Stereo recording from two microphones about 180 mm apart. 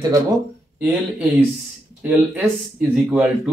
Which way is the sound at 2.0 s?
10° right (ahead or behind).